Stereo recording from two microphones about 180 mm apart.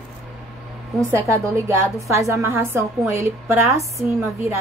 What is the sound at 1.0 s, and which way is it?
A woman's voice, 15° right (ahead or behind).